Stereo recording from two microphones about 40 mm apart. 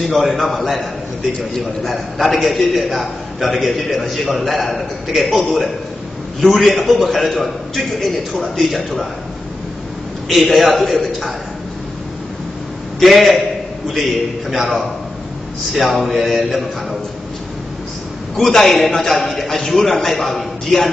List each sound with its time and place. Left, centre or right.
0.1 s a man's voice: centre
10.2 s a man's voice: centre
13.0 s a man's voice: centre
14.5 s a man's voice: centre
18.3 s a man's voice: centre